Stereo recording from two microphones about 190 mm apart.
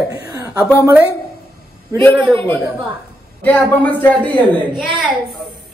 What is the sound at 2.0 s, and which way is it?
A woman's voice, 10° left (ahead or behind).